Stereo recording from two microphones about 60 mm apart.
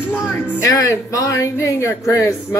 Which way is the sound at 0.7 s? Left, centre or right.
Left.